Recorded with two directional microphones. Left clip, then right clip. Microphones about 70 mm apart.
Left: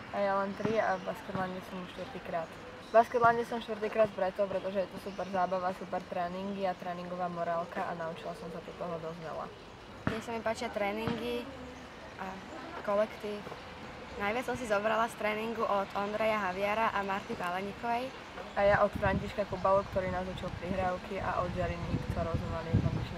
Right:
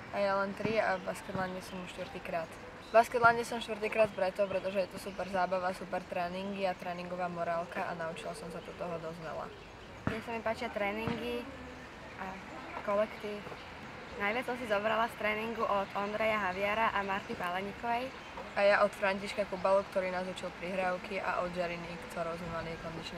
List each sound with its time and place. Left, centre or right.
0.1 s a sound: right
0.6 s speech: right
2.3 s speech: right
2.9 s speech: centre
10.0 s speech: centre
12.8 s speech: centre
14.2 s speech: centre
18.6 s speech: right